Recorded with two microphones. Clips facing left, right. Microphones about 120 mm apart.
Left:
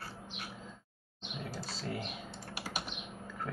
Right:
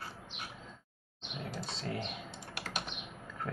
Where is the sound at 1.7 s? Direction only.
5° left (ahead or behind).